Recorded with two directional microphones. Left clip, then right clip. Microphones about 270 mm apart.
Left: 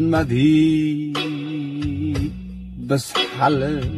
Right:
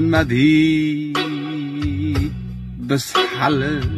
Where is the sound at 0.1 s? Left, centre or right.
Centre.